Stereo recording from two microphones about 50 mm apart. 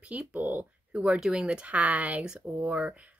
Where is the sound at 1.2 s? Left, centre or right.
Centre.